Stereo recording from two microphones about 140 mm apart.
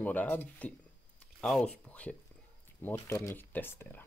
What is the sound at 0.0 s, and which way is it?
Speech, 10° left (ahead or behind).